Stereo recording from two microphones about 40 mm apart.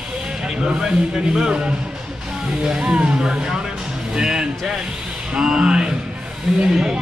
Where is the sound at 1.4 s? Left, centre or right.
Right.